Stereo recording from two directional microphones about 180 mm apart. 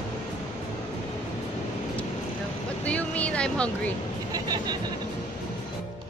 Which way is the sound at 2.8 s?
10° left (ahead or behind).